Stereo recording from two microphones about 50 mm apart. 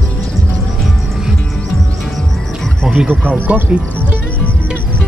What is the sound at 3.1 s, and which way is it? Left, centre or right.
Speech, right.